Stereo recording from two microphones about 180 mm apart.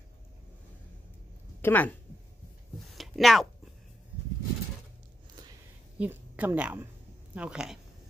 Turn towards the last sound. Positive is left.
turn(degrees=-5)  # may be behind; listen again after turning